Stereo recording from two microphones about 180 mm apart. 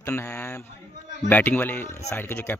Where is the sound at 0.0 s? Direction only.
15° left (ahead or behind).